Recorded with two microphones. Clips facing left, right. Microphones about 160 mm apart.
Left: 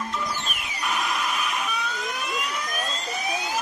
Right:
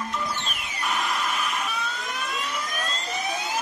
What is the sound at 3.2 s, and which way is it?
Fire alarm, centre (ahead or behind).